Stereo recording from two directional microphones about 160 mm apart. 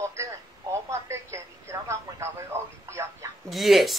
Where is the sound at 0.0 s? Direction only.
15° right (ahead or behind).